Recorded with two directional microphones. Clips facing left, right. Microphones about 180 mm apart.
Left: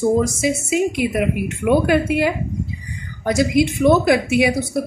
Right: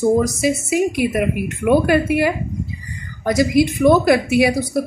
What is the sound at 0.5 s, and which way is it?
Speech, 20° left (ahead or behind).